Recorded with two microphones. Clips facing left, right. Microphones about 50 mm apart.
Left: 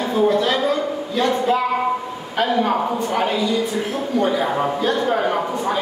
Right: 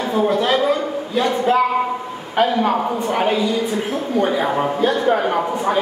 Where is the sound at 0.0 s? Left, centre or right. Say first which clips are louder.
Even; right.